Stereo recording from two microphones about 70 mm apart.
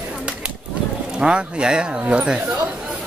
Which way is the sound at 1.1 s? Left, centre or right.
Centre.